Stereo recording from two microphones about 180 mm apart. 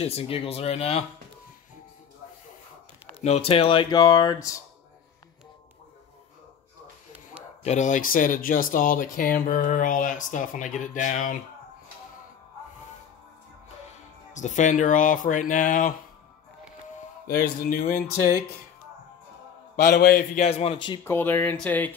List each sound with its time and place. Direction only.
0.0 s speech: 35° left (ahead or behind)
3.1 s speech: 35° left (ahead or behind); by 4.6 s 20° left (ahead or behind)
7.6 s speech: 40° left (ahead or behind)
14.3 s speech: 45° left (ahead or behind)
17.3 s speech: 55° left (ahead or behind)
19.7 s mantra: 55° left (ahead or behind)
20.4 s speech: 35° left (ahead or behind)
21.0 s speech: 10° left (ahead or behind)